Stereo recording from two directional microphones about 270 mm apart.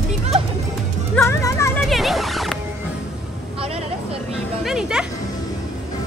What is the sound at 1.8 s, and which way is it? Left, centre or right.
Speech, centre.